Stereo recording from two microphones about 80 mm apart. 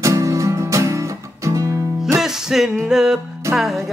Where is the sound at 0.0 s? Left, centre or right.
Right.